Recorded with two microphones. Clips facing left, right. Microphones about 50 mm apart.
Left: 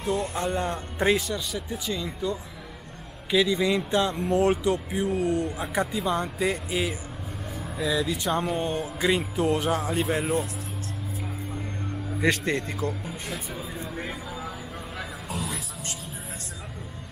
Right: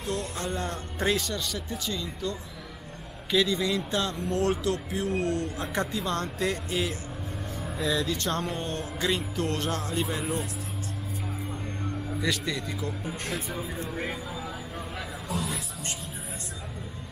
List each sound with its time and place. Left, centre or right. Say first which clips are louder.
0.0 s speech: left 5 dB; left
12.2 s a man's voice: left 6 dB; left
13.1 s speech: right 1 dB; centre
15.3 s music: right 1 dB; centre